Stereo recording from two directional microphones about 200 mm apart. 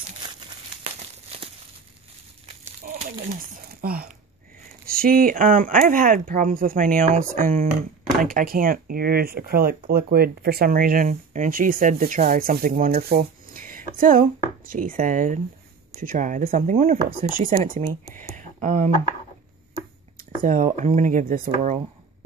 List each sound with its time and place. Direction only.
0.2 s crumpling: 20° right (ahead or behind)
2.8 s crumpling: 40° right (ahead or behind)
3.8 s speech: 50° right (ahead or behind)
17.8 s speech: 15° left (ahead or behind)
18.3 s a sound: 35° right (ahead or behind)
20.4 s speech: 40° right (ahead or behind)